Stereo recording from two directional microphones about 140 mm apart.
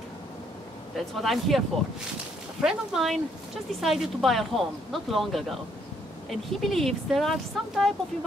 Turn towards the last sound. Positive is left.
turn(degrees=0)  # may be behind; listen again after turning